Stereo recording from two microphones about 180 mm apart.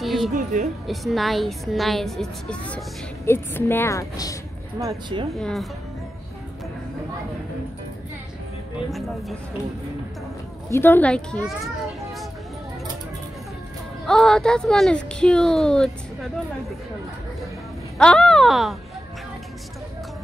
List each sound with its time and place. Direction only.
0.0 s music: centre (ahead or behind)
0.4 s speech: 45° right (ahead or behind)
0.8 s a woman's voice: centre (ahead or behind); by 4.4 s 20° left (ahead or behind)
4.7 s speech: 20° right (ahead or behind)
5.3 s speech: centre (ahead or behind)
10.7 s a woman's voice: 10° left (ahead or behind)
14.0 s speech: 5° left (ahead or behind)
17.9 s speech: 5° left (ahead or behind)